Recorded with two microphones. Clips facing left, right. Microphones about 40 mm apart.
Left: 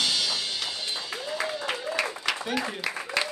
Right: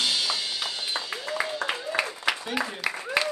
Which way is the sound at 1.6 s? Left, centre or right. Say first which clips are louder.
Right 1 dB; centre.